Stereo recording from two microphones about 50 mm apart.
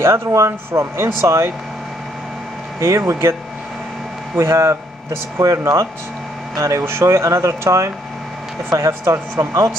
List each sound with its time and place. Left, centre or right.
0.0 s speech: right
2.8 s speech: right
4.4 s speech: right
6.5 s speech: right
6.8 s speech: right
8.6 s speech: right